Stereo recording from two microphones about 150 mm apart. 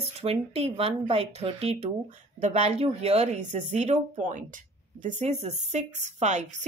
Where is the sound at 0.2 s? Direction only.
40° right (ahead or behind).